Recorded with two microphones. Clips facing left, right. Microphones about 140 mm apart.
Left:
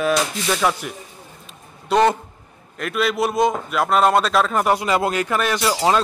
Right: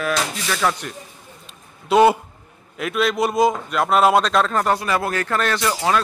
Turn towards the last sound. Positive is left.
turn(degrees=15)  # may be behind; listen again after turning